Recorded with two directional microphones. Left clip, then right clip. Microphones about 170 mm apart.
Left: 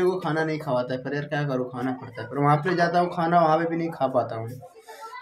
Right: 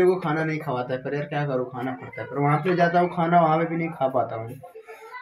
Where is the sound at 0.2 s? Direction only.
10° left (ahead or behind).